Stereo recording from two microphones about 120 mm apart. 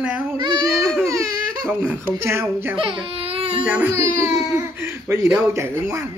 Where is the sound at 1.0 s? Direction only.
25° right (ahead or behind).